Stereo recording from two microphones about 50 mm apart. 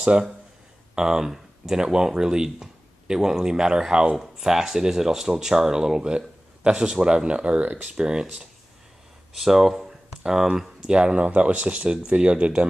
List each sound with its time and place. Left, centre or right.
0.0 s speech: centre
7.9 s speech: centre